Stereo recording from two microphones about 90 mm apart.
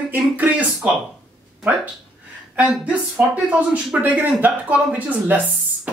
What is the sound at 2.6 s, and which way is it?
Speech, 15° right (ahead or behind).